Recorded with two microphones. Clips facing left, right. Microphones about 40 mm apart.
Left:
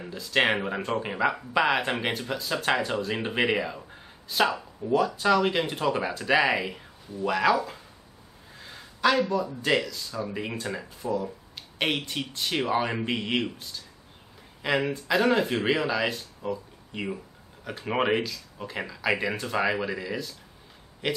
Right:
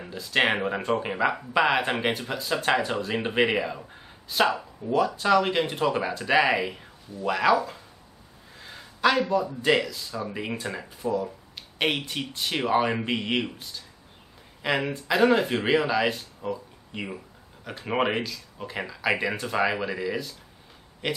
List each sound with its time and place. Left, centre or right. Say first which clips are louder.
0.0 s speech: even; centre